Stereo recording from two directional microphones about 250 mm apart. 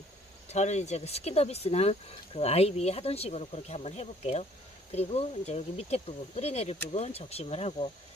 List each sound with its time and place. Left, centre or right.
0.5 s speech: left